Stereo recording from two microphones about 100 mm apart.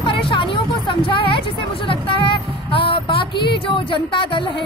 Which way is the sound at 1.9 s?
65° left (ahead or behind).